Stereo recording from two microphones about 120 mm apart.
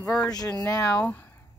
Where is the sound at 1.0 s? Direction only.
15° left (ahead or behind).